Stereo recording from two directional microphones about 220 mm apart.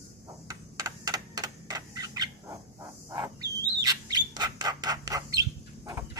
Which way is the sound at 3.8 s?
15° right (ahead or behind).